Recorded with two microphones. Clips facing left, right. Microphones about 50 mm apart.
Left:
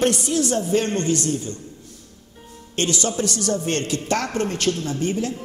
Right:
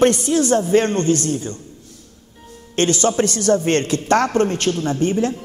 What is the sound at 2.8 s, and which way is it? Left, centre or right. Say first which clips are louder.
A woman's voice: right 6 dB; right.